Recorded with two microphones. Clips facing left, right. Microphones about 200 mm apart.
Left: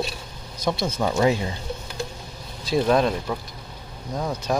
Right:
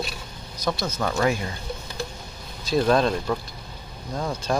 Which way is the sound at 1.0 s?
15° left (ahead or behind).